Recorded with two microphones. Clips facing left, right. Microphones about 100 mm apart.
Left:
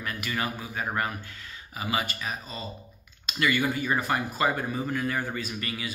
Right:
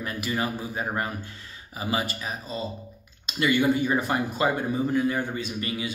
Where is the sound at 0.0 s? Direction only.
30° right (ahead or behind).